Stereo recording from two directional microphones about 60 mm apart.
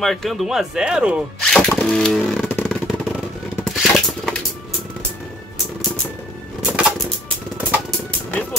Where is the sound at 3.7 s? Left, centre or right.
Centre.